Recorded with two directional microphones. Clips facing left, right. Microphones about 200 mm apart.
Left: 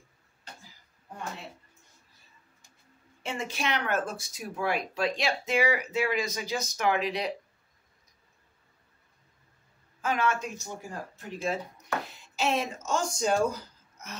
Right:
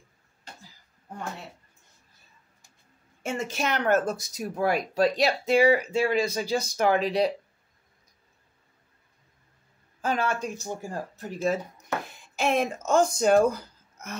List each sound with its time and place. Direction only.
3.2 s speech: 45° right (ahead or behind)
10.0 s speech: 35° right (ahead or behind)
12.1 s speech: 50° right (ahead or behind)